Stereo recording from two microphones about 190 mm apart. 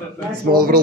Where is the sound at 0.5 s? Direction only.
50° right (ahead or behind).